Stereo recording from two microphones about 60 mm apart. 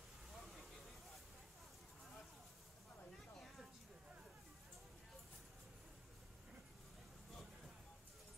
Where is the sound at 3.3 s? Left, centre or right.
Centre.